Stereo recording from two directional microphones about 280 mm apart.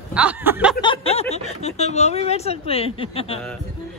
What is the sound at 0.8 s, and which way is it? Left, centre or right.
Speech, centre.